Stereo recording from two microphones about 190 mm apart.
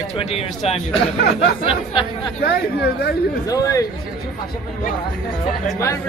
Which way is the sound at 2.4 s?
60° left (ahead or behind).